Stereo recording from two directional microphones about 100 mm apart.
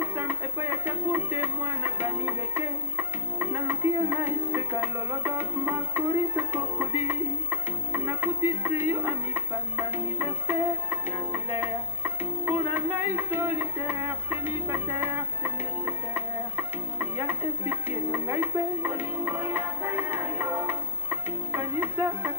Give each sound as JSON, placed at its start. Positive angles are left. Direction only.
{"t": 0.0, "sound": "music", "side_deg": -20}